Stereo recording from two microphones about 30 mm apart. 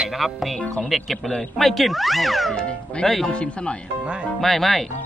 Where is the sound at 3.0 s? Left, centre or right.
Centre.